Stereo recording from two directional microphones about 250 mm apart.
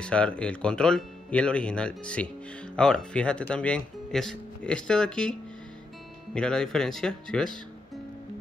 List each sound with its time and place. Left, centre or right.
0.0 s speech: centre